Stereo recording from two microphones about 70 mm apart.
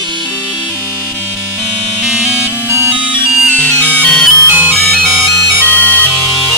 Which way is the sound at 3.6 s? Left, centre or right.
Centre.